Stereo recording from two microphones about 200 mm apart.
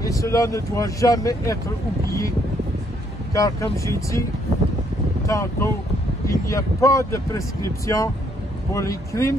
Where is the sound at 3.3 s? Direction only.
15° left (ahead or behind).